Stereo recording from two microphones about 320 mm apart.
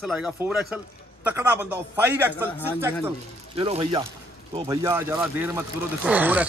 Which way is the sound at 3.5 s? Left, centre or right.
Centre.